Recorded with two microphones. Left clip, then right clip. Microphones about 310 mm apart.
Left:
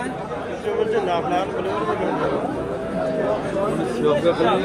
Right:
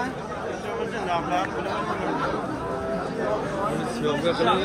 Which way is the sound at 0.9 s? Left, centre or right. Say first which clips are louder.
Left 2 dB; centre.